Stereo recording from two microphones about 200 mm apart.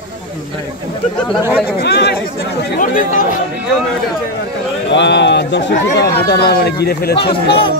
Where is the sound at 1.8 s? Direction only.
55° left (ahead or behind).